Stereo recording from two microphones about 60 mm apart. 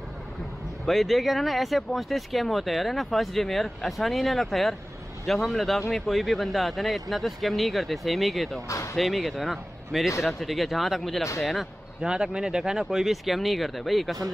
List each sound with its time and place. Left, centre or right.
0.8 s speech: centre
8.6 s speech: left
8.9 s speech: centre
12.0 s speech: centre